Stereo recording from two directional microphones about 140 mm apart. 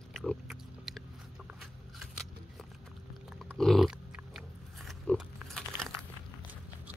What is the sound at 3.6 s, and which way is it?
Pig, centre (ahead or behind).